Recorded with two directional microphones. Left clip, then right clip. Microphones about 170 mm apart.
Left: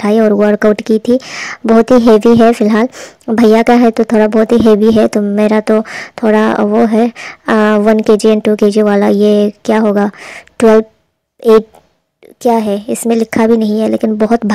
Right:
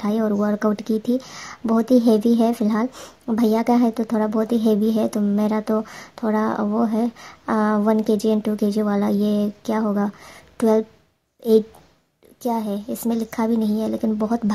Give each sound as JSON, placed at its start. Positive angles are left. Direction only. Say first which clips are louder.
{"t": 0.0, "sound": "speech", "louder": "left 13 dB", "side_deg": 40}